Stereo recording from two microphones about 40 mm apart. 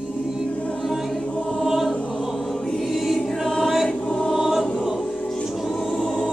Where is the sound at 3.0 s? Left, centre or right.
Centre.